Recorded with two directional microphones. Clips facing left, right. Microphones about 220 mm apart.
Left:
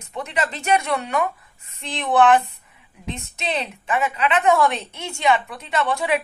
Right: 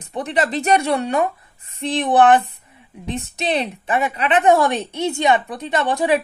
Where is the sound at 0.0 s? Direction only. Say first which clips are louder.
Right 5 dB; 35° right (ahead or behind).